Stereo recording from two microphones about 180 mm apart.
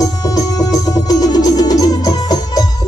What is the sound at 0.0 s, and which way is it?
Music, 20° left (ahead or behind).